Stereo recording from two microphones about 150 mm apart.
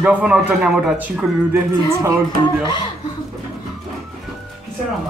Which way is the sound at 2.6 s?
30° left (ahead or behind).